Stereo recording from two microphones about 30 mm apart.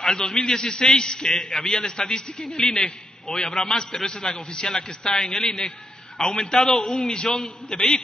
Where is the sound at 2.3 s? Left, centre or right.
Centre.